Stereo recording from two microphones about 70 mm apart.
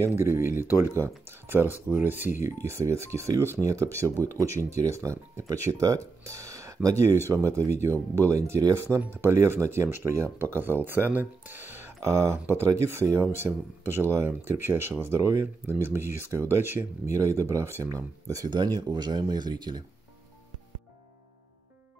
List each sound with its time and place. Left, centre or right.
0.0 s speech: right
17.8 s speech: right
18.5 s speech: right